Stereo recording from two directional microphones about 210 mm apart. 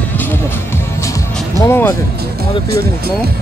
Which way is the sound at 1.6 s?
15° left (ahead or behind).